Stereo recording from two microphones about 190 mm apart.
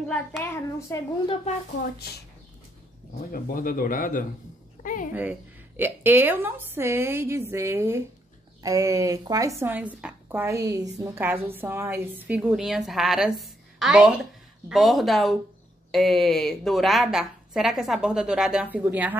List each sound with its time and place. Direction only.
0.1 s child singing: 10° left (ahead or behind)
1.2 s speech: 25° left (ahead or behind)
3.3 s speech: 50° left (ahead or behind)
4.8 s a sound: 45° left (ahead or behind)
5.8 s a woman's voice: 10° right (ahead or behind)